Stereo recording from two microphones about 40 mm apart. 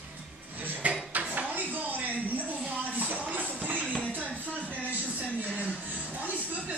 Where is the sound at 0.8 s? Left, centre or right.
Right.